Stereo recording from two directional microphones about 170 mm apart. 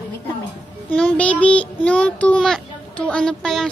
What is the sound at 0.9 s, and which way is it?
Child singing, 5° left (ahead or behind).